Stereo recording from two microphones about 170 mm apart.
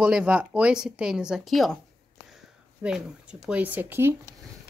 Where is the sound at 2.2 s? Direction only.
5° right (ahead or behind).